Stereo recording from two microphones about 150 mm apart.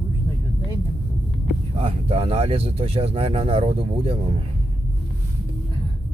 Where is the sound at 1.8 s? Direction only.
40° right (ahead or behind).